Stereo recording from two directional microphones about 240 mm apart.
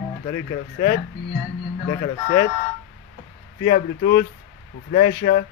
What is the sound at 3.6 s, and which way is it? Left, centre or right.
Speech, left.